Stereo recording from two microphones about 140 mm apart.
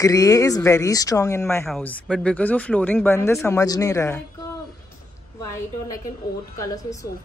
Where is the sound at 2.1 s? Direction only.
10° left (ahead or behind).